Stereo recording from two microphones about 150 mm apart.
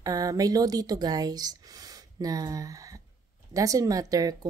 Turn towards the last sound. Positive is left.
turn(degrees=-25)  # may be behind; listen again after turning